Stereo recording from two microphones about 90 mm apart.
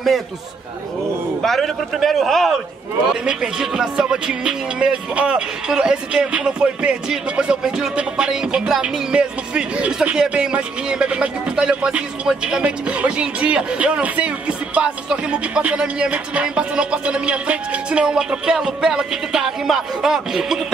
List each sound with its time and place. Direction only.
1.4 s a man's voice: 5° left (ahead or behind)
3.3 s music: 10° right (ahead or behind)